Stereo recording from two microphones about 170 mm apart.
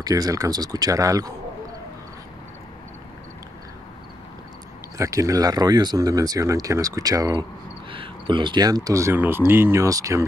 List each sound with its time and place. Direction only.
0.0 s speech: 20° right (ahead or behind)
4.9 s speech: 20° right (ahead or behind)